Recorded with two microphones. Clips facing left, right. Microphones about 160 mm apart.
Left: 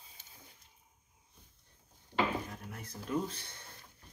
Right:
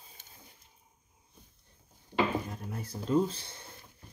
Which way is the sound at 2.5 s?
30° right (ahead or behind).